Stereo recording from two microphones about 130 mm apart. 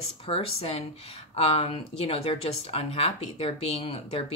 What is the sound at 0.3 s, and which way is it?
Speech, 50° left (ahead or behind).